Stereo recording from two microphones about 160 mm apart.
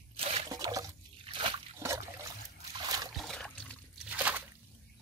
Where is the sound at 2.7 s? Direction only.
25° right (ahead or behind).